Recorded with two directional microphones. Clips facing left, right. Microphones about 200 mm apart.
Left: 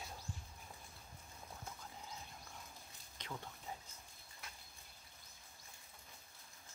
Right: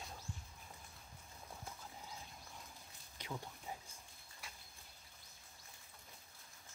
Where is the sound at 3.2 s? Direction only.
10° right (ahead or behind).